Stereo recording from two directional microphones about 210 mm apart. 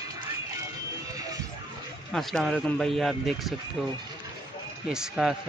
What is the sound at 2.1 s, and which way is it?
Speech, centre (ahead or behind).